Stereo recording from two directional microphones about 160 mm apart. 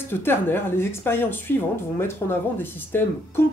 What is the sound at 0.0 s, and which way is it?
Speech, 15° left (ahead or behind).